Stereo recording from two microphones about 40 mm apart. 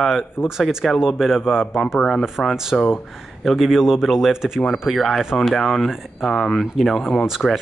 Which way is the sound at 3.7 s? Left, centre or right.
Centre.